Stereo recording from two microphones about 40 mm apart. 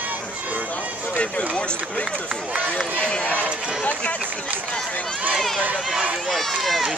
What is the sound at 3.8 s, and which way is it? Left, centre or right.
Speech, left.